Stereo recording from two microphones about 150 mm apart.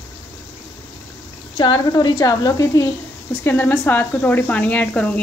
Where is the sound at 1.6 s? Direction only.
30° left (ahead or behind); by 5.2 s 10° left (ahead or behind).